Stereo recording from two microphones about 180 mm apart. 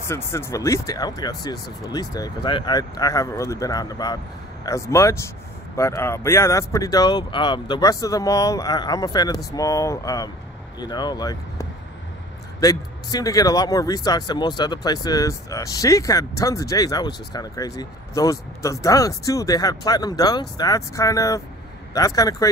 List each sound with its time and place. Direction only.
0.1 s a man's voice: 15° left (ahead or behind)